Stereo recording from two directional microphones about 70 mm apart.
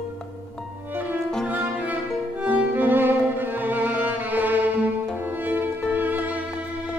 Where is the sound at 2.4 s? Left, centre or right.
Right.